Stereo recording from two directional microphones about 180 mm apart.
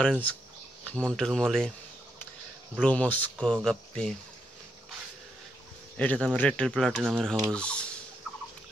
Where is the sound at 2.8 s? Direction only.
5° left (ahead or behind).